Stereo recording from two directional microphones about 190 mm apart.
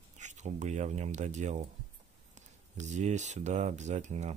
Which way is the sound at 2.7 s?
40° right (ahead or behind).